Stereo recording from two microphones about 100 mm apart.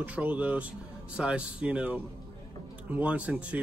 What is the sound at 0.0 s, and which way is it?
Speech, 15° right (ahead or behind).